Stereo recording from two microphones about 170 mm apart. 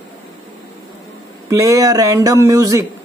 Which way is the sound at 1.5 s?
20° right (ahead or behind).